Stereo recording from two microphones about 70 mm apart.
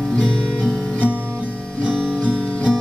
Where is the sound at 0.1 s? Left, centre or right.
Centre.